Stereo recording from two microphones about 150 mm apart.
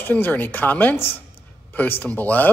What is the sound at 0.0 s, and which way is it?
A man's voice, 15° left (ahead or behind).